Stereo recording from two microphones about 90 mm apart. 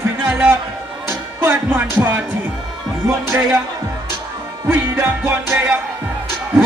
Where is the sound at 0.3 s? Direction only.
15° right (ahead or behind).